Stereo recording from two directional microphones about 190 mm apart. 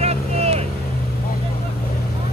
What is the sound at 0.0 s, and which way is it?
Vehicle, 35° right (ahead or behind).